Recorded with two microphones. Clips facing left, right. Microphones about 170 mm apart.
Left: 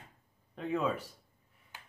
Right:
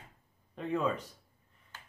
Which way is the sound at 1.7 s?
15° left (ahead or behind).